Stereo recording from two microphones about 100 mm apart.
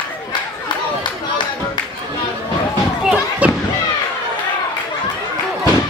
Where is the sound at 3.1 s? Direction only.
10° right (ahead or behind).